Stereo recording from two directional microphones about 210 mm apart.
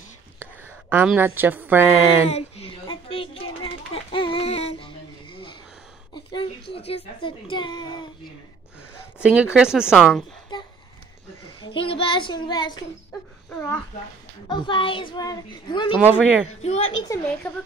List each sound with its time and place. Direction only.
0.4 s a woman's voice: 10° right (ahead or behind)
2.3 s a child's voice: 30° left (ahead or behind)
3.6 s a sound: 25° left (ahead or behind)
7.5 s a child's voice: 20° left (ahead or behind)
9.2 s speech: 5° right (ahead or behind)
10.5 s a sound: 20° left (ahead or behind)
11.6 s a child's voice: 25° left (ahead or behind)
14.5 s a child's voice: 25° left (ahead or behind)
15.9 s speech: 5° right (ahead or behind)
16.6 s a woman's voice: 30° left (ahead or behind)
17.1 s speech: 5° left (ahead or behind)